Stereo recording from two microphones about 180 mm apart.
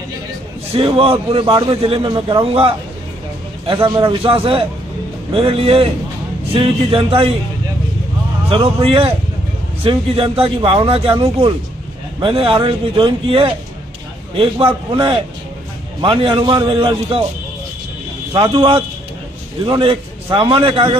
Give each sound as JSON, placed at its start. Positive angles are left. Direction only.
{"t": 0.7, "sound": "a man's voice", "side_deg": -30}
{"t": 3.7, "sound": "a man's voice", "side_deg": -25}
{"t": 8.5, "sound": "a man's voice", "side_deg": -30}
{"t": 18.3, "sound": "a man's voice", "side_deg": -30}